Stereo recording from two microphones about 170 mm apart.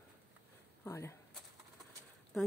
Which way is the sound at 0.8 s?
15° left (ahead or behind).